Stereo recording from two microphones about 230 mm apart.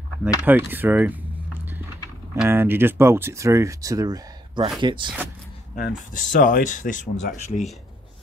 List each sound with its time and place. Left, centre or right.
0.5 s a sound: centre
2.3 s speech: centre
5.8 s speech: left